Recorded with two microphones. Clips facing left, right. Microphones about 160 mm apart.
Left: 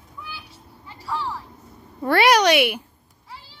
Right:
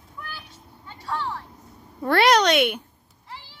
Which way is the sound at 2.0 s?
5° left (ahead or behind).